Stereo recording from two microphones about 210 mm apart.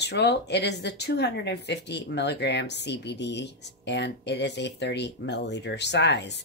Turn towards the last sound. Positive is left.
turn(degrees=55)  # may be behind; listen again after turning